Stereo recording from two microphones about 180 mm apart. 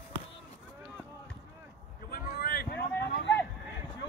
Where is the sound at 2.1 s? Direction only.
55° left (ahead or behind); by 3.4 s 70° left (ahead or behind).